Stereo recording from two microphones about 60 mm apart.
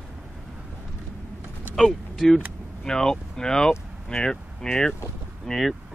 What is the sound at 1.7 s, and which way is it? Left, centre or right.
Speech, centre.